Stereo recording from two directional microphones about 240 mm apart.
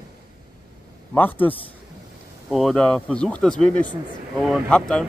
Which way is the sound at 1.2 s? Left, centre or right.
Centre.